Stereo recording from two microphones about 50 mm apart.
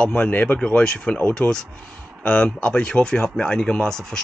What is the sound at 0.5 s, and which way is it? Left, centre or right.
Speech, centre.